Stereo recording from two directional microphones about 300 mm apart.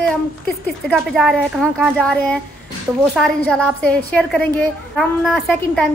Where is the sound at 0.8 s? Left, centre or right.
Centre.